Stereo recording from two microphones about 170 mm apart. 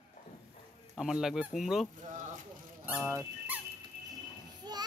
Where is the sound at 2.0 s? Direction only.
45° right (ahead or behind).